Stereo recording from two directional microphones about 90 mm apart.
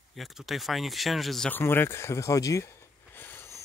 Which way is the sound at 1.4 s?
25° left (ahead or behind).